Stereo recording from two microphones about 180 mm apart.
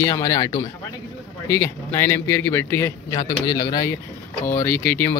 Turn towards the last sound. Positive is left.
turn(degrees=10)  # may be behind; listen again after turning